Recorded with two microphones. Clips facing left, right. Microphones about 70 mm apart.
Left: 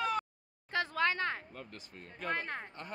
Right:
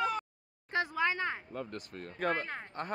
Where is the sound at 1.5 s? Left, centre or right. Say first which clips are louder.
Right 8 dB; right.